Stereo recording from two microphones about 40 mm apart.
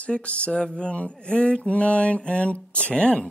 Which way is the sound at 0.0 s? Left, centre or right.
Left.